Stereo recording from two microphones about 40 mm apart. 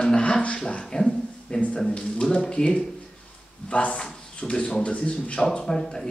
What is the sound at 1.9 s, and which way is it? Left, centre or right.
Speech, left.